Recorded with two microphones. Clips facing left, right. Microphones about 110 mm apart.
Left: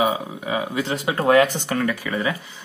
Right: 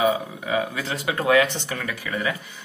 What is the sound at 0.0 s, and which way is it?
Speech, 20° left (ahead or behind).